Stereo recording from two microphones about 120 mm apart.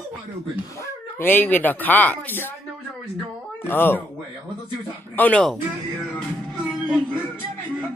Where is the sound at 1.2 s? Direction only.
15° left (ahead or behind).